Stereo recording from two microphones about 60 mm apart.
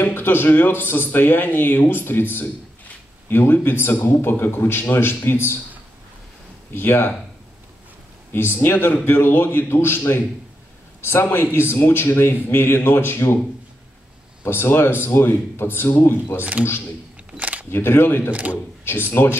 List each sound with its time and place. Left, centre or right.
0.0 s speech: left
6.7 s speech: left
8.3 s speech: left
14.4 s speech: left
16.3 s speech: right
17.4 s camera: right
17.6 s speech: left
18.3 s speech: right
19.0 s speech: left